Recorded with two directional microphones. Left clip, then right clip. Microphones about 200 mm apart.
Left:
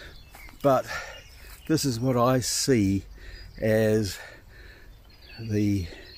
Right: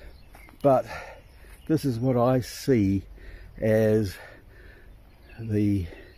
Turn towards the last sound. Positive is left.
turn(degrees=0)  # may be behind; listen again after turning